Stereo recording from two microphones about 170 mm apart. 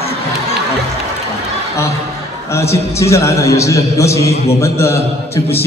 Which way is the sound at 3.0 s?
15° left (ahead or behind).